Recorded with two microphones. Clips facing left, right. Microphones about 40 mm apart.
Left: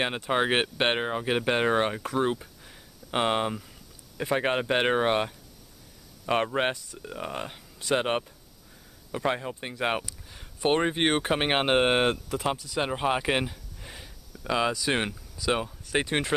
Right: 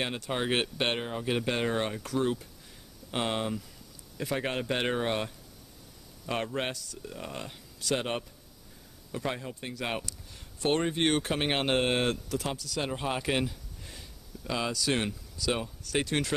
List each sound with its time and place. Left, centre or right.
0.0 s speech: left